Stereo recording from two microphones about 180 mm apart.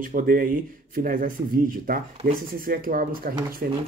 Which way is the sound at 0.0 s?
50° right (ahead or behind).